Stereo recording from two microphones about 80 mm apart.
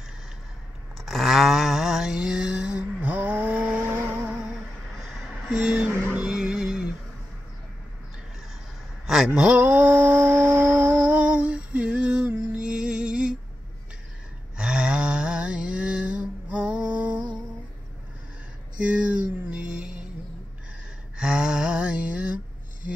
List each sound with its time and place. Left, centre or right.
0.9 s a sound: centre
5.8 s music: centre
9.0 s mantra: centre
12.5 s music: centre
14.6 s a sound: centre
18.8 s music: centre
21.2 s music: centre